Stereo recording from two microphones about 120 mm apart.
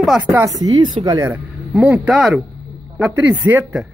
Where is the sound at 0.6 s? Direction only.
35° right (ahead or behind).